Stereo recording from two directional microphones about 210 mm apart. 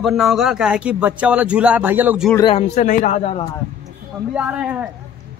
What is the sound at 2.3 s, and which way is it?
A man's voice, 25° left (ahead or behind).